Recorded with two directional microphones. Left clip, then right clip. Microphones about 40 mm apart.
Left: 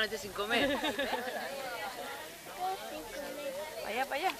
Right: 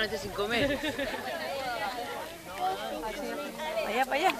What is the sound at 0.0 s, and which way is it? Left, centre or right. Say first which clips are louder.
Speech: right 3 dB; centre.